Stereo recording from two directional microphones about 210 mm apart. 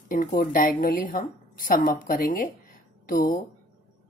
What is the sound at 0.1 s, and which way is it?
A woman's voice, 40° left (ahead or behind).